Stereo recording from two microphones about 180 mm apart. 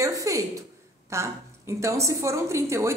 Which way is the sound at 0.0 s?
20° right (ahead or behind).